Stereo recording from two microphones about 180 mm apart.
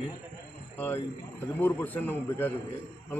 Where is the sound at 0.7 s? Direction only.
10° left (ahead or behind).